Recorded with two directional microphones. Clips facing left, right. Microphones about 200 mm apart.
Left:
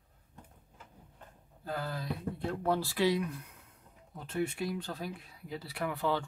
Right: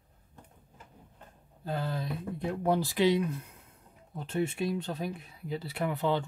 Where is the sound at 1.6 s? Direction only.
25° right (ahead or behind).